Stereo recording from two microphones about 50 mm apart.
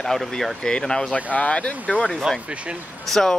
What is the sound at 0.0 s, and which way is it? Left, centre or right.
Speech, centre.